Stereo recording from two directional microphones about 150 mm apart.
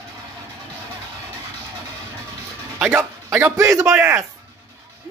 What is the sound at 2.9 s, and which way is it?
A man's voice, 15° right (ahead or behind).